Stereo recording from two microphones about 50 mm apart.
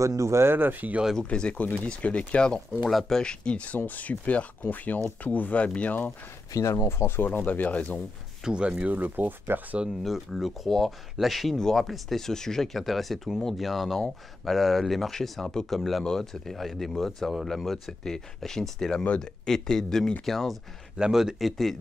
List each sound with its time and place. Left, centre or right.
0.0 s speech: right
0.5 s speech: right
1.3 s speech: centre
2.9 s speech: centre; by 6.1 s left
6.6 s speech: left
7.2 s speech: left
8.5 s speech: centre
8.8 s speech: right
10.0 s speech: centre
11.5 s speech: centre
11.8 s speech: centre
21.0 s speech: centre
21.4 s speech: centre